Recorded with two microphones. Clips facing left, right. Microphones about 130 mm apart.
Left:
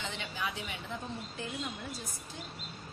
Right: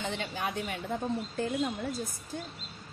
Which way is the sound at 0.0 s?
45° right (ahead or behind).